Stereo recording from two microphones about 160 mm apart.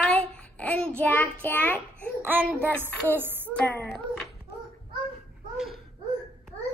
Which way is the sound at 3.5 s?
10° left (ahead or behind).